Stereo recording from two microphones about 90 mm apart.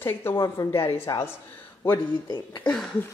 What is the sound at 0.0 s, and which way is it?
A woman's voice, 25° left (ahead or behind).